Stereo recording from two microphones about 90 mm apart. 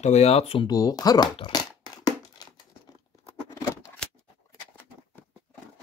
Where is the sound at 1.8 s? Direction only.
45° left (ahead or behind).